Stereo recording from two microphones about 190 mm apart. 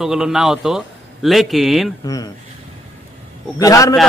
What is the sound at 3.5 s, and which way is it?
Speech, 15° left (ahead or behind).